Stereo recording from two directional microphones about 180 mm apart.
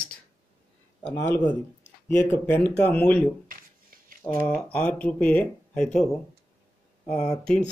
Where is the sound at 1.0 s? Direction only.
75° left (ahead or behind).